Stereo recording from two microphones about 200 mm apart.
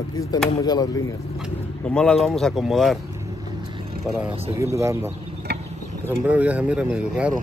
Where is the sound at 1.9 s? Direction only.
5° left (ahead or behind).